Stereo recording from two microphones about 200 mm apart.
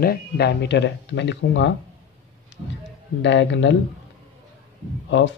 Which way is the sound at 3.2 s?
65° left (ahead or behind).